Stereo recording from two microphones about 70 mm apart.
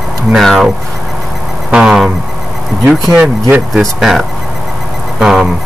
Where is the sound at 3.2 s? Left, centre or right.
Right.